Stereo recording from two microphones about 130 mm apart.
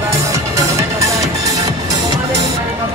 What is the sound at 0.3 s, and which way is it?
Music, 25° right (ahead or behind).